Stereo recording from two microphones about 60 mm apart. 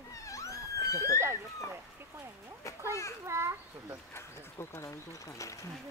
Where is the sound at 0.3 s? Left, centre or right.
Left.